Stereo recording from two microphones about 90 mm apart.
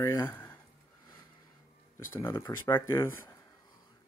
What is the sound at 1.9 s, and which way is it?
Speech, 25° left (ahead or behind).